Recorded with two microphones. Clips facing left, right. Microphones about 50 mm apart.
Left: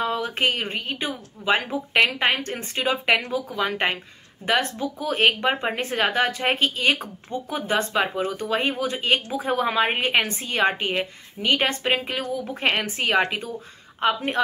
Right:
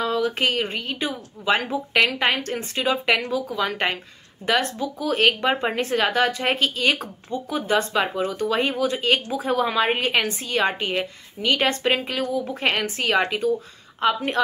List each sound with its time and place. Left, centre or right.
0.0 s speech: left
1.7 s speech: centre; by 5.1 s left
5.1 s speech: centre
5.8 s speech: left
7.2 s speech: left
7.9 s speech: centre
11.6 s speech: centre
12.7 s a woman's voice: centre